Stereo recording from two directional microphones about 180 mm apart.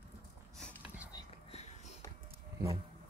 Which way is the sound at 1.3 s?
35° left (ahead or behind).